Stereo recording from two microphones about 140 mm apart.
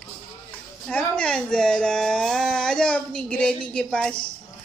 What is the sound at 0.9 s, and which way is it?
Speech, 10° left (ahead or behind).